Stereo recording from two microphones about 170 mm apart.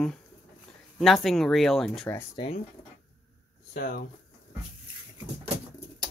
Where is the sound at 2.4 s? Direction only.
25° left (ahead or behind).